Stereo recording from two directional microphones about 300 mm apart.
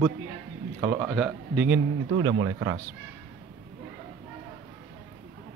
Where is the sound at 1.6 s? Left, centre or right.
Right.